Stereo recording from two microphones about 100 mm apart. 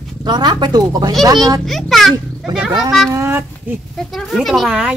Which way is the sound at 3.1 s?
25° right (ahead or behind).